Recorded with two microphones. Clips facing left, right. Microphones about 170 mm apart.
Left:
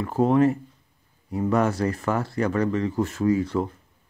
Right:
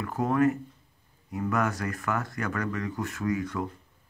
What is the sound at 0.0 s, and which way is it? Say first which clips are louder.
Speech: left 5 dB; 25° left (ahead or behind).